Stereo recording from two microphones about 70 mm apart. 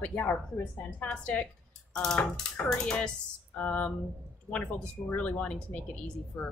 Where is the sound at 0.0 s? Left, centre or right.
Left.